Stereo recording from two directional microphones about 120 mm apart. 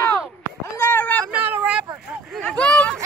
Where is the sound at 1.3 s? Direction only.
10° right (ahead or behind).